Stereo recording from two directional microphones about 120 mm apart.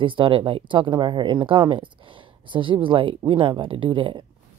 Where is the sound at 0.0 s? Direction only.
45° right (ahead or behind).